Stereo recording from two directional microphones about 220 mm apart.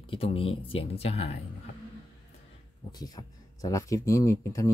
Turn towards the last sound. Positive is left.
turn(degrees=15)  # may be behind; listen again after turning